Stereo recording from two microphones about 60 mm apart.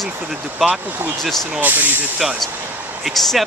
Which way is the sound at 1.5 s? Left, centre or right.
Right.